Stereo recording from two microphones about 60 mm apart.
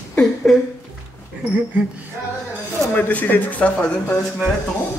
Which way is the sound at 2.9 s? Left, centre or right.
Left.